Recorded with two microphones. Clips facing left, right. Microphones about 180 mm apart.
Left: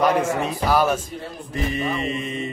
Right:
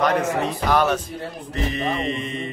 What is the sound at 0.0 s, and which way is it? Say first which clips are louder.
Speech: left 1 dB; 10° left (ahead or behind).